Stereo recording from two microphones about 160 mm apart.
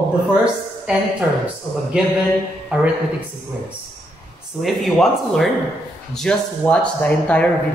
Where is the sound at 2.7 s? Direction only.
5° right (ahead or behind).